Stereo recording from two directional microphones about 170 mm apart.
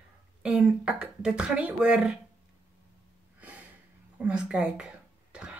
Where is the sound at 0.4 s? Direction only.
5° right (ahead or behind).